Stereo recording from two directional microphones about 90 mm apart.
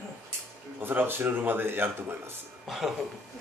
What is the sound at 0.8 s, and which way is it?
A man's voice, 25° right (ahead or behind).